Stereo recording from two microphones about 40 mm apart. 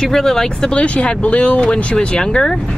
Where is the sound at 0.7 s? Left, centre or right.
Left.